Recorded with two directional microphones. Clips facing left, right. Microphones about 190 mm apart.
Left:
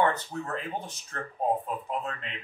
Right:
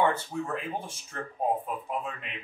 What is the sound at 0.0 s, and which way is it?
A man's voice, 10° right (ahead or behind).